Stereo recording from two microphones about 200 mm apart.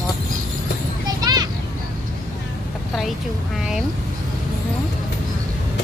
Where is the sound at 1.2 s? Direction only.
20° right (ahead or behind).